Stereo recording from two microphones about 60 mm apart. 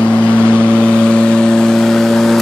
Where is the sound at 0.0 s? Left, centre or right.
Left.